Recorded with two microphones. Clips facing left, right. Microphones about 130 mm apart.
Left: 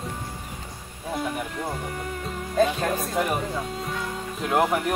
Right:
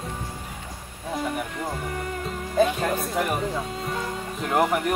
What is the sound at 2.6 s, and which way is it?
Speech, centre (ahead or behind).